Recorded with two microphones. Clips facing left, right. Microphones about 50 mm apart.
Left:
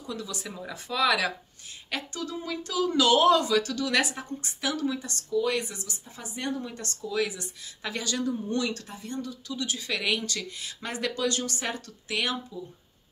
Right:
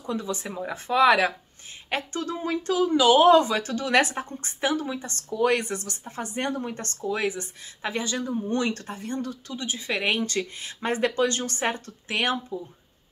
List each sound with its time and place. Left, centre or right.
0.0 s speech: right
2.9 s speech: centre
3.3 s speech: right
5.3 s speech: right
9.6 s speech: right